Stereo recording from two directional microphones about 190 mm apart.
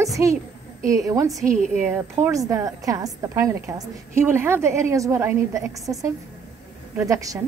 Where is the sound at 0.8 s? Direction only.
15° right (ahead or behind).